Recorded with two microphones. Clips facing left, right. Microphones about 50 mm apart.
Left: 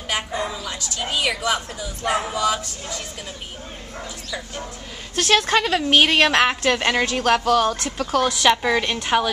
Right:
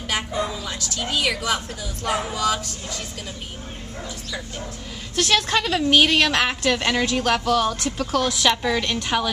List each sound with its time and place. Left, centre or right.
0.7 s a woman's voice: centre
5.1 s a woman's voice: centre
8.5 s a woman's voice: centre